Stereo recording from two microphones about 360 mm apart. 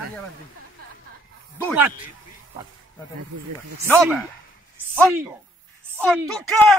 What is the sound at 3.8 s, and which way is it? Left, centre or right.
Speech, centre.